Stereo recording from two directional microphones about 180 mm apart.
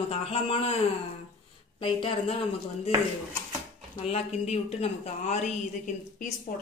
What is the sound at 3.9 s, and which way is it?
Speech, 35° left (ahead or behind).